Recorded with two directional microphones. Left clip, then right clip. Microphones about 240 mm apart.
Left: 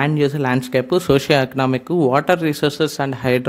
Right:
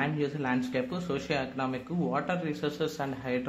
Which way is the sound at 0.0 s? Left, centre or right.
Left.